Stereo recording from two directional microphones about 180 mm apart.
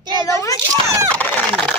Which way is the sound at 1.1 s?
10° left (ahead or behind).